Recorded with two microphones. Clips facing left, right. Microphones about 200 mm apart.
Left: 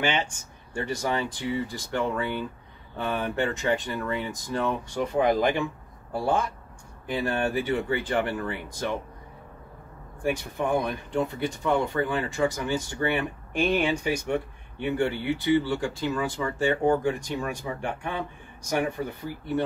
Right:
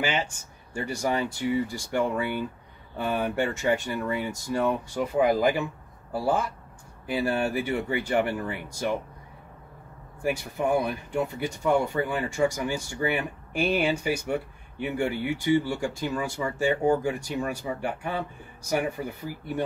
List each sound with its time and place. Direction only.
0.0 s speech: 5° right (ahead or behind)
10.2 s speech: 10° right (ahead or behind)